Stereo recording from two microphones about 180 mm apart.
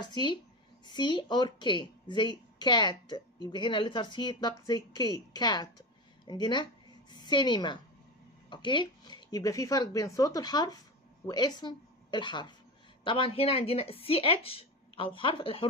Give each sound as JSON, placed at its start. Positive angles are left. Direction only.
{"t": 0.0, "sound": "a woman's voice", "side_deg": 25}